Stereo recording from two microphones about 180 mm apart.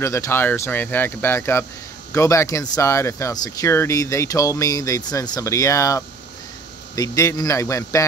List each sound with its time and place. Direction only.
0.0 s speech: 15° left (ahead or behind)